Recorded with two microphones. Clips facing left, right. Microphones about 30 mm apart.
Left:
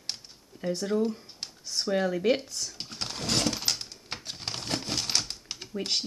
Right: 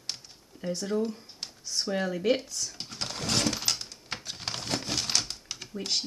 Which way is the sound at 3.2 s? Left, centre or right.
Centre.